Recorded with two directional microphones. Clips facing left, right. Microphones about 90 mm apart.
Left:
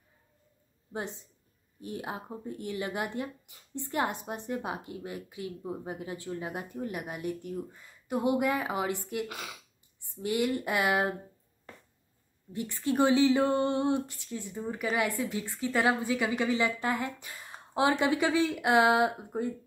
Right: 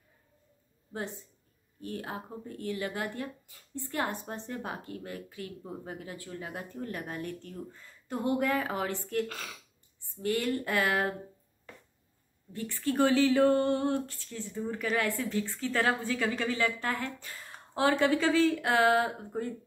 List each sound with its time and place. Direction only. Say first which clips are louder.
0.9 s speech: left 1 dB; 20° left (ahead or behind)
12.5 s speech: left 1 dB; 20° left (ahead or behind)